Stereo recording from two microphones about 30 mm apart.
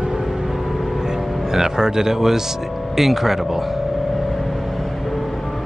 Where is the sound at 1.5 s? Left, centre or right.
Centre.